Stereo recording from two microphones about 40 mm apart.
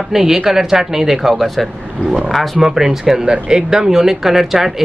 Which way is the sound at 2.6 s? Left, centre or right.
Centre.